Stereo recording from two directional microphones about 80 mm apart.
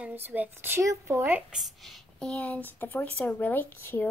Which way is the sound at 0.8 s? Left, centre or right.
Right.